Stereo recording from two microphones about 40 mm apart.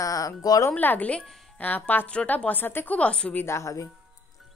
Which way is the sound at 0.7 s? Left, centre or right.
Left.